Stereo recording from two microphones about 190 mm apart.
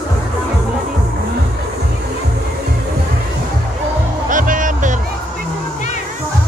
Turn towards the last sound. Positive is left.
turn(degrees=-45)  # may be behind; listen again after turning